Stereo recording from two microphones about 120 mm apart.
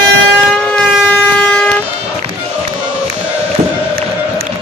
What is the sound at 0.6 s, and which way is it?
Vehicle, 10° left (ahead or behind).